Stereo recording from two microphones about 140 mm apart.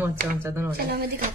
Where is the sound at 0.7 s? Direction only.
90° right.